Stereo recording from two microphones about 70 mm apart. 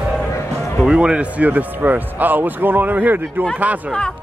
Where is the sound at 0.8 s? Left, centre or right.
Centre.